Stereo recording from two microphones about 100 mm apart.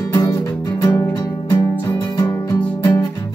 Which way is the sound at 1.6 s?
25° left (ahead or behind).